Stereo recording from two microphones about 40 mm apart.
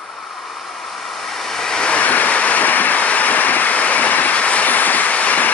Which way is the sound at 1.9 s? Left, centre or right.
Left.